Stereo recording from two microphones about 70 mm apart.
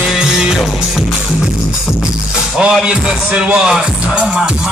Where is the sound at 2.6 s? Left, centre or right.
Centre.